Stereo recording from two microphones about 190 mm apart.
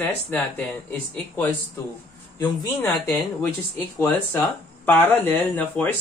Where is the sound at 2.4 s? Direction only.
20° left (ahead or behind).